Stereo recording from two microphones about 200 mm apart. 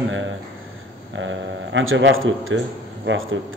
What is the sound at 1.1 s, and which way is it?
A man's voice, 70° right (ahead or behind).